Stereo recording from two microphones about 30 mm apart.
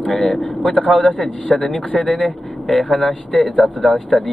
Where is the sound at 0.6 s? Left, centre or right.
Left.